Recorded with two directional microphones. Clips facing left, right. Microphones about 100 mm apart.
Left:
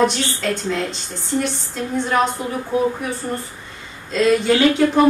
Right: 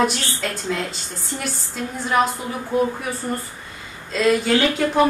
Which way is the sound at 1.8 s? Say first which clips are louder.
Left 2 dB; 5° right (ahead or behind).